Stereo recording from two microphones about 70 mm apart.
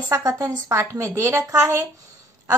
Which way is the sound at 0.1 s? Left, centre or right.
Right.